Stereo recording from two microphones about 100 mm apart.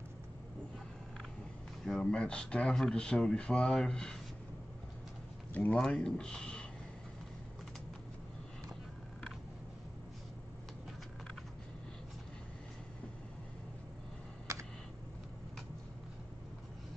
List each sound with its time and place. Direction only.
1.9 s speech: 10° left (ahead or behind)
5.5 s speech: 15° left (ahead or behind)
14.5 s a sound: 35° right (ahead or behind)